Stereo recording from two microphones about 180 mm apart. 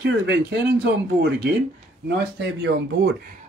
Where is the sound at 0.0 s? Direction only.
70° right (ahead or behind).